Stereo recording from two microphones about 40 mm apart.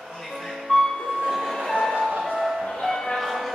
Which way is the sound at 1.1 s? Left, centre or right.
Centre.